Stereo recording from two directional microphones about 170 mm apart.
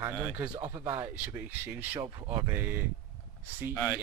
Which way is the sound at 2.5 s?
10° right (ahead or behind).